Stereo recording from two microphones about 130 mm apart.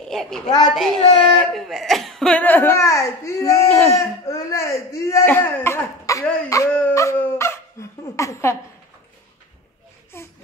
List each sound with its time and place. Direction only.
0.1 s a woman's voice: 5° left (ahead or behind); by 6.2 s 20° left (ahead or behind)
6.5 s dog: 25° left (ahead or behind)
10.1 s a sound: 20° left (ahead or behind)